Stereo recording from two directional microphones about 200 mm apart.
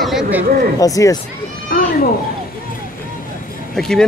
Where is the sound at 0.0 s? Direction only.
5° right (ahead or behind).